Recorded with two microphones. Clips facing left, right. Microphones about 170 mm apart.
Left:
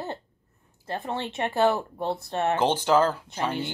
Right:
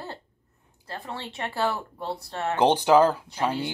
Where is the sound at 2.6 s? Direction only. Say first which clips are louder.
Right 5 dB; 15° right (ahead or behind).